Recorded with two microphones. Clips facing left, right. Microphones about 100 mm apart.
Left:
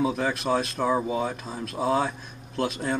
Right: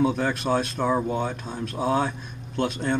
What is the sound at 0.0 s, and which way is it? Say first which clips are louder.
Speech: right 2 dB; centre (ahead or behind).